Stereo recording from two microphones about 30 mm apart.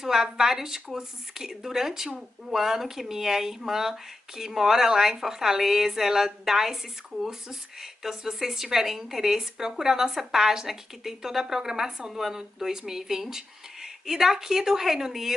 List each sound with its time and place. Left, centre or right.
0.0 s speech: centre